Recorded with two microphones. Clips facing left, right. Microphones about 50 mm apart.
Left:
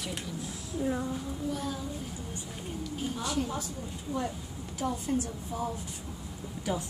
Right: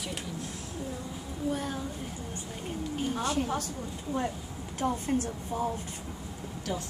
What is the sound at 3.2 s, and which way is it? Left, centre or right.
Speech, right.